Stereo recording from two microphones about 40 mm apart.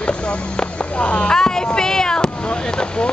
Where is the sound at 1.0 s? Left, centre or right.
Left.